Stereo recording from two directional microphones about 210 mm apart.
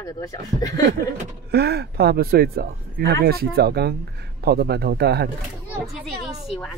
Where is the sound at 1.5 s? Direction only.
50° right (ahead or behind).